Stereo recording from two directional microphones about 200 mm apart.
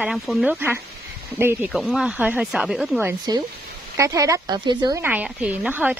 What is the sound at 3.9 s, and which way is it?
Speech, 15° right (ahead or behind).